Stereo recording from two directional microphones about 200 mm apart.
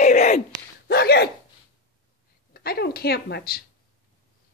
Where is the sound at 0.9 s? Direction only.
55° left (ahead or behind).